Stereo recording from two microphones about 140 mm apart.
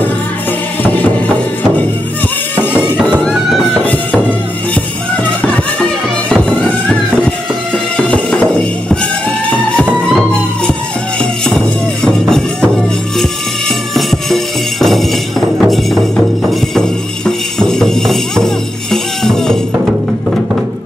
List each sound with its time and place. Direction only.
3.3 s music: centre (ahead or behind)
8.1 s music: 10° left (ahead or behind)
11.4 s music: 5° left (ahead or behind)
13.9 s music: centre (ahead or behind)
17.6 s music: 5° left (ahead or behind)